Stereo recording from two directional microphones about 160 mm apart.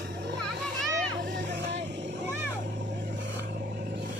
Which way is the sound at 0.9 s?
90° right.